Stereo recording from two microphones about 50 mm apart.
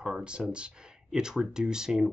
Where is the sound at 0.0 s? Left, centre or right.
Centre.